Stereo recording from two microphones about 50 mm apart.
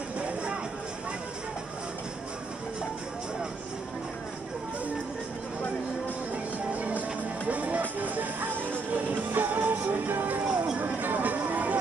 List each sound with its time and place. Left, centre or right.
0.2 s music: right
6.3 s music: right
10.4 s a sound: right